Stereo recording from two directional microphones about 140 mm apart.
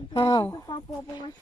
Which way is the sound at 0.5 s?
30° left (ahead or behind).